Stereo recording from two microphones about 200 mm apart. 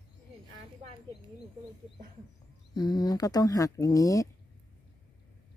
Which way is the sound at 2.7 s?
20° left (ahead or behind).